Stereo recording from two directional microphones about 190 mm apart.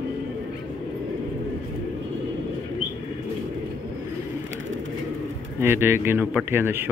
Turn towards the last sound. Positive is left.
turn(degrees=-10)  # may be behind; listen again after turning